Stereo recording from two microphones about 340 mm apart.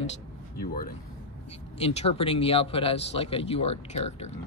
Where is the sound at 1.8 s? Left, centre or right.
Centre.